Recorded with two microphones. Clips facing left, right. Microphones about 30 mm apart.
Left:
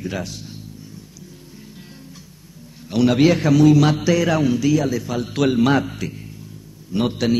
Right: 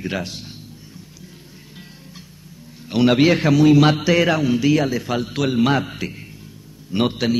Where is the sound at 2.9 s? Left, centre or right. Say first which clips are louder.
Even; right.